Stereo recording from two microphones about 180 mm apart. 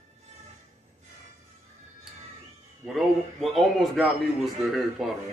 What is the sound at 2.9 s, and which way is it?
A man's voice, centre (ahead or behind).